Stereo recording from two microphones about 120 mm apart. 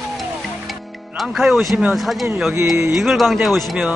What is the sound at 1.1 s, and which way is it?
Speech, centre (ahead or behind).